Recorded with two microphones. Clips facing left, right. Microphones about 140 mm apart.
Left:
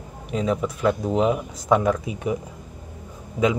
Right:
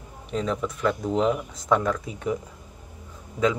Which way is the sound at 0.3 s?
10° left (ahead or behind).